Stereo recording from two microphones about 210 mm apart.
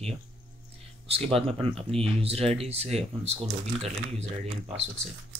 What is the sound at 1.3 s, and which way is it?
Speech, 25° right (ahead or behind).